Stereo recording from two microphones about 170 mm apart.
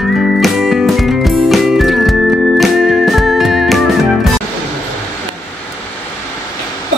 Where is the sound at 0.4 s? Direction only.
Centre (ahead or behind).